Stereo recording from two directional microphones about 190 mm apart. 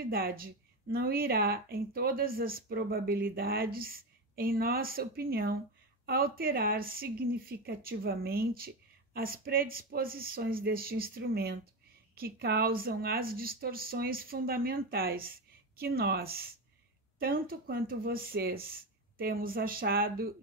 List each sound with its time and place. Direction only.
0.0 s a woman's voice: 50° right (ahead or behind)